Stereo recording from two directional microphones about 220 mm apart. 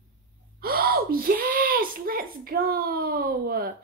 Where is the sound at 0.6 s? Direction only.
45° right (ahead or behind).